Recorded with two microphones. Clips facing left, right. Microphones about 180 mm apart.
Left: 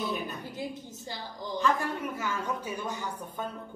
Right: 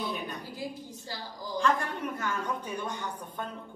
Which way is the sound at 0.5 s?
20° left (ahead or behind).